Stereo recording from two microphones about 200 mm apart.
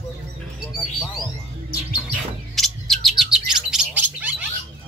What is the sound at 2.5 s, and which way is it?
Bird, centre (ahead or behind).